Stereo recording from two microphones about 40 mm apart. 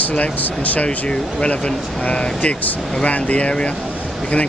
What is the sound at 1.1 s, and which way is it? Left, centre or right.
Speech, left.